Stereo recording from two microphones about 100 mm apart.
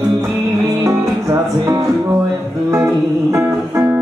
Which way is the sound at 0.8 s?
30° right (ahead or behind).